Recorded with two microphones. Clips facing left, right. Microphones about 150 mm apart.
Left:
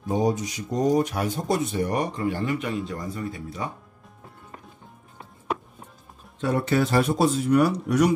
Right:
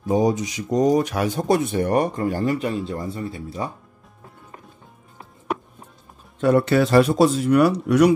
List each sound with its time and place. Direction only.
0.0 s speech: 90° right; by 3.7 s 30° right (ahead or behind)
6.4 s speech: 70° right (ahead or behind)